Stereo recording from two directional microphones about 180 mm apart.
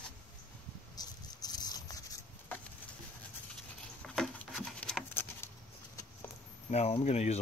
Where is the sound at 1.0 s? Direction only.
20° left (ahead or behind).